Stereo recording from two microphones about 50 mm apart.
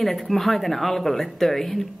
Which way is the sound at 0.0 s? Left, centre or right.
Centre.